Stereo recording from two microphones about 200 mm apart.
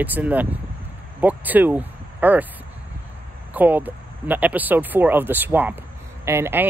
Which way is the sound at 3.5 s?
10° right (ahead or behind).